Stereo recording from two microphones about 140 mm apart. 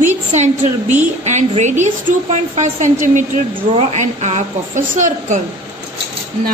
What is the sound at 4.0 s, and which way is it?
A woman's voice, 55° right (ahead or behind).